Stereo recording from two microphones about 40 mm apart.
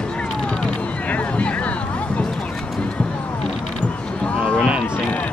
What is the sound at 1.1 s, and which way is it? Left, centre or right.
Hubbub, left.